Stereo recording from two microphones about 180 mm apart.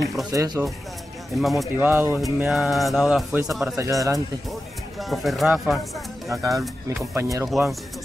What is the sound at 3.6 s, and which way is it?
Speech, 15° right (ahead or behind).